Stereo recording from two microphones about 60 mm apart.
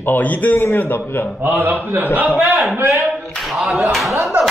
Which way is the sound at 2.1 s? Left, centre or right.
Right.